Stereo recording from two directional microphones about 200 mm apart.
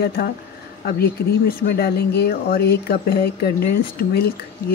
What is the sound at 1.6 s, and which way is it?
Speech, 50° left (ahead or behind).